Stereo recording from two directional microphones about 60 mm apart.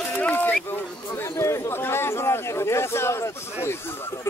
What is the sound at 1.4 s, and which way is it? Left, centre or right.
Speech, left.